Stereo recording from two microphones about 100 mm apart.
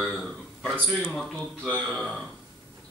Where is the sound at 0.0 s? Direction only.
5° left (ahead or behind).